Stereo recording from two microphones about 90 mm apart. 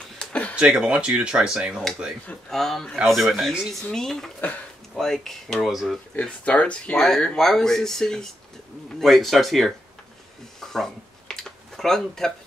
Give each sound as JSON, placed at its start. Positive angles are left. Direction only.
{"t": 0.2, "sound": "a sound", "side_deg": 15}
{"t": 0.6, "sound": "speech", "side_deg": -10}
{"t": 2.5, "sound": "speech", "side_deg": 5}
{"t": 4.4, "sound": "speech", "side_deg": 20}
{"t": 4.9, "sound": "speech", "side_deg": 5}
{"t": 6.1, "sound": "speech", "side_deg": 15}
{"t": 10.6, "sound": "a sound", "side_deg": 5}